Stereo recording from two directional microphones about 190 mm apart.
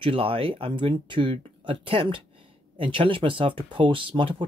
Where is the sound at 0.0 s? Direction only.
30° right (ahead or behind).